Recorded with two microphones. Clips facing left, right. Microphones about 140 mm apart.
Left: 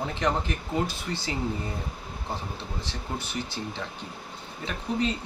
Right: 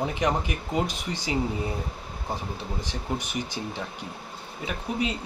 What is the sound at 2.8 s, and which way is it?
Speech, 15° right (ahead or behind).